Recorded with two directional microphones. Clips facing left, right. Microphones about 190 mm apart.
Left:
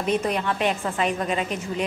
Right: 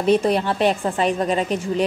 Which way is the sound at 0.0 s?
35° right (ahead or behind).